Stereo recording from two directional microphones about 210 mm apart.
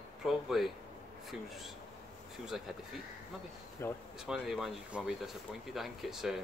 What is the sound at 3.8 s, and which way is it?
Speech, 10° left (ahead or behind).